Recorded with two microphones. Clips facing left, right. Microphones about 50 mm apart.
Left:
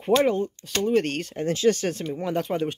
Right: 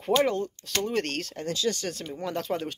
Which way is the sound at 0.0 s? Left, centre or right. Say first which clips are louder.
Left 3 dB; centre.